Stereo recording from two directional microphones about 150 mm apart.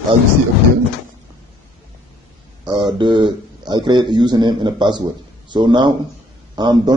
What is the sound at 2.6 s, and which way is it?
A man's voice, 30° right (ahead or behind).